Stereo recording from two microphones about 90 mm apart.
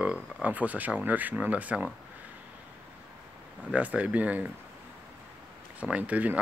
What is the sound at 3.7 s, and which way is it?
Speech, 15° right (ahead or behind).